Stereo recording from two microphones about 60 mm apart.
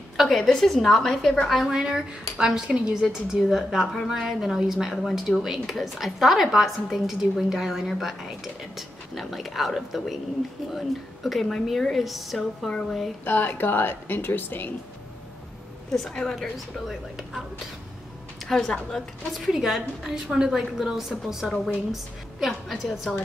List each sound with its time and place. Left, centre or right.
0.2 s a woman's voice: centre
1.8 s a woman's voice: centre
9.2 s a woman's voice: centre
11.2 s a woman's voice: centre
12.4 s speech: centre
13.2 s a woman's voice: left
15.9 s speech: centre
16.3 s a woman's voice: centre
18.4 s a sound: centre
18.9 s a woman's voice: centre
19.5 s a woman's voice: centre